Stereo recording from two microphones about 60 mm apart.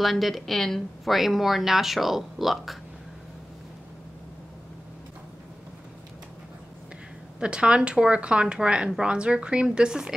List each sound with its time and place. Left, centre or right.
0.0 s speech: centre
7.3 s speech: centre